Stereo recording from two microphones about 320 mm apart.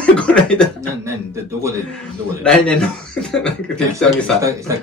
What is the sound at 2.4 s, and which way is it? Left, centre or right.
Cough, centre.